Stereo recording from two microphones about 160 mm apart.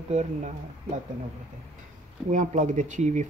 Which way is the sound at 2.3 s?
50° right (ahead or behind).